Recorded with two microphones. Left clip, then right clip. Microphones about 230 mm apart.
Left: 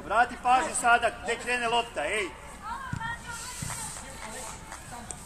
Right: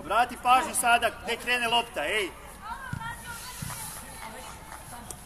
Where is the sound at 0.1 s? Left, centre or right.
Right.